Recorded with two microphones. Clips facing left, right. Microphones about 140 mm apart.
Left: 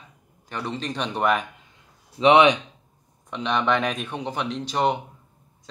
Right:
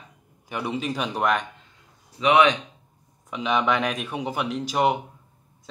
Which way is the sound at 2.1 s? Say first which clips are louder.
Left 3 dB; 25° left (ahead or behind).